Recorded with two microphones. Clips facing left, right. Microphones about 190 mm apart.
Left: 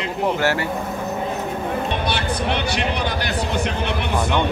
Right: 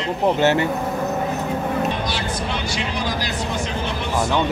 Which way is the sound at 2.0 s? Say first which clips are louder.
Left 3 dB; 60° left (ahead or behind).